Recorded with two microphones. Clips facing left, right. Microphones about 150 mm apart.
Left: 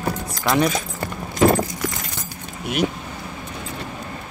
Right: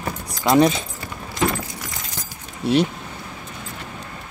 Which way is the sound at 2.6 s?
30° right (ahead or behind).